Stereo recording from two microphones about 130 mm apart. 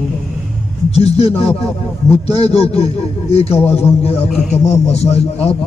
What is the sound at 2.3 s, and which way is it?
A man's voice, 50° left (ahead or behind).